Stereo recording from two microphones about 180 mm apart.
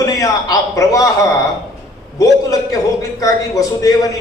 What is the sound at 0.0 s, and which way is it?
A man's voice, 20° left (ahead or behind).